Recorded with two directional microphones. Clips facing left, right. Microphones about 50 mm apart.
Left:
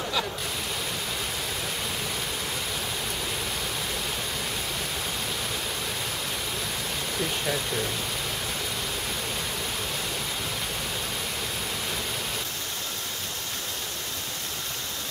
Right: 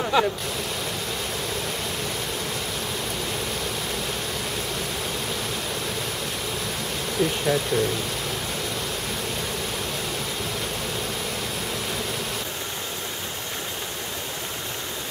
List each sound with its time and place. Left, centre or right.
0.1 s waterfall: right
7.2 s speech: centre